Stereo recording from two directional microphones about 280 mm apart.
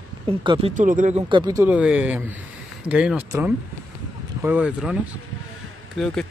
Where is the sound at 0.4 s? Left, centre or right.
Centre.